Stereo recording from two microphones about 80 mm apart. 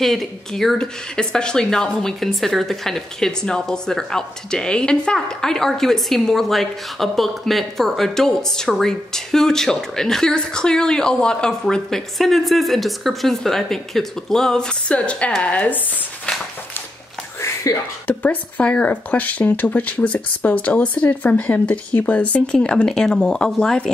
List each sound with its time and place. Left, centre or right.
0.0 s speech: centre
17.4 s a sound: left
18.0 s speech: centre